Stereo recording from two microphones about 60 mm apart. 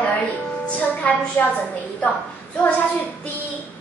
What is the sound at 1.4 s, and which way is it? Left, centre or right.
Speech, left.